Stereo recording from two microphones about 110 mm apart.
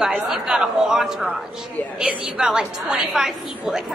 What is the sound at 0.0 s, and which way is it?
A woman's voice, 5° right (ahead or behind).